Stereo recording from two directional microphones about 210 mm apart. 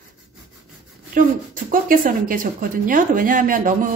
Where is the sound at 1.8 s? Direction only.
40° right (ahead or behind).